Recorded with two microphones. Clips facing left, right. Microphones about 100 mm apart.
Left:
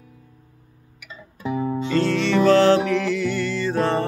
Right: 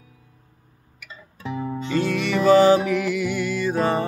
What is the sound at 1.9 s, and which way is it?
Music, 10° right (ahead or behind).